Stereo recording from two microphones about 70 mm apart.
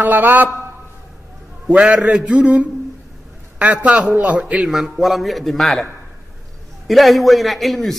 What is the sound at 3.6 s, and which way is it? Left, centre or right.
A man's voice, right.